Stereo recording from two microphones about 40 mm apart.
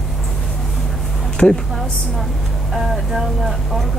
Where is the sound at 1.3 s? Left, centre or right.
Left.